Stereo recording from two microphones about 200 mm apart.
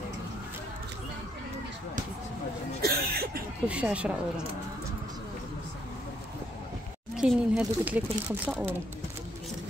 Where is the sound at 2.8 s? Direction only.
50° right (ahead or behind).